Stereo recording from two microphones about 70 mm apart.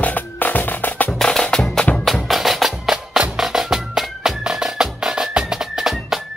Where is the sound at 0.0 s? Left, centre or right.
Left.